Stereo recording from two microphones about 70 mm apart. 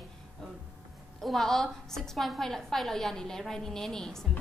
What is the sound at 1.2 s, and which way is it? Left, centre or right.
A woman's voice, centre.